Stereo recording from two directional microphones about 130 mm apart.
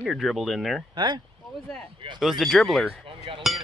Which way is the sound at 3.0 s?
45° right (ahead or behind).